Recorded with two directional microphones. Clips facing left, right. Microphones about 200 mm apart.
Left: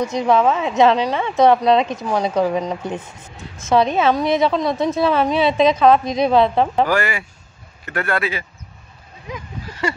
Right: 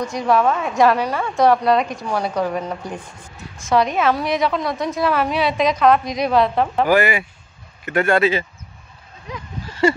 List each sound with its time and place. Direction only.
0.0 s a woman's voice: 20° left (ahead or behind)
6.9 s speech: 15° right (ahead or behind)
9.8 s speech: 30° right (ahead or behind)